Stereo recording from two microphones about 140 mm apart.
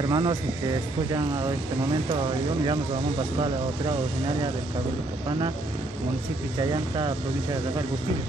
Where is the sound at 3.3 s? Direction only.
35° right (ahead or behind).